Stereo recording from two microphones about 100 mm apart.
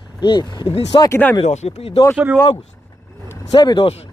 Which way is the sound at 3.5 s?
50° left (ahead or behind).